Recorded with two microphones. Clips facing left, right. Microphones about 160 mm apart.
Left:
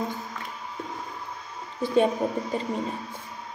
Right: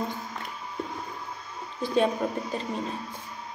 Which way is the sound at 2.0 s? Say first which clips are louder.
Left 2 dB; 20° left (ahead or behind).